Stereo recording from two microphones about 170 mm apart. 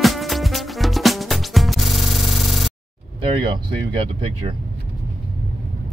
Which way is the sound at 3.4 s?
30° right (ahead or behind).